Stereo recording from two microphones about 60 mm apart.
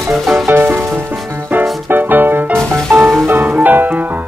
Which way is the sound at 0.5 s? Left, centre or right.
Right.